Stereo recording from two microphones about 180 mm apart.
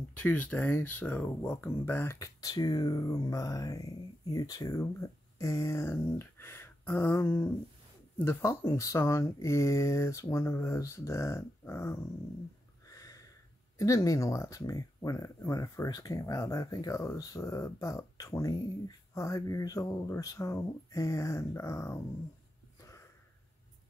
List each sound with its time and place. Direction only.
0.2 s speech: 10° left (ahead or behind)
12.8 s a sound: 20° left (ahead or behind)
13.7 s speech: 20° left (ahead or behind)